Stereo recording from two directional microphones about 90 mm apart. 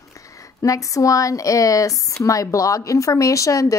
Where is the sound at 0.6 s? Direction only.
35° left (ahead or behind).